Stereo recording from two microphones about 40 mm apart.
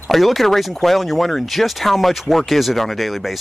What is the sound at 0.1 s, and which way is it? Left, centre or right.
Speech, centre.